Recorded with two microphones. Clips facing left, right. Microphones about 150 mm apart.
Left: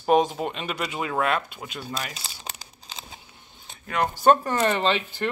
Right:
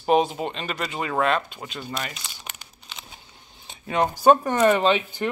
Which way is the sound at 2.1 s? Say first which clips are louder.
Left 2 dB; 35° left (ahead or behind).